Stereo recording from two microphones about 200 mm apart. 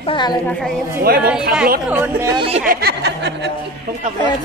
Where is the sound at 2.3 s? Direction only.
30° right (ahead or behind).